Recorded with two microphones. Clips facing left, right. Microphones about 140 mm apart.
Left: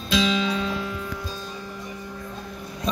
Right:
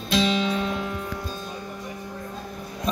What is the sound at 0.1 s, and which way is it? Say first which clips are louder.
Music: even; 60° right (ahead or behind).